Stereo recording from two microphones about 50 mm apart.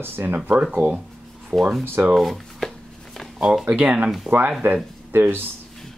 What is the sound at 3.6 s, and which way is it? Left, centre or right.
Speech, right.